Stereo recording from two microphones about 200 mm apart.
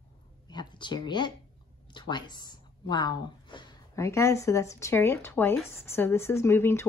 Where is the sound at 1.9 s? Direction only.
20° left (ahead or behind).